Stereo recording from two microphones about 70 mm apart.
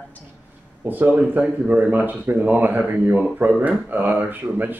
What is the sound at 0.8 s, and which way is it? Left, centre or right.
Speech, right.